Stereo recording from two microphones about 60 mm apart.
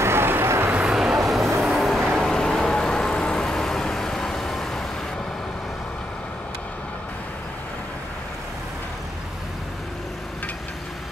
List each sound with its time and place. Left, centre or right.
0.0 s vehicle: right
0.8 s vehicle: centre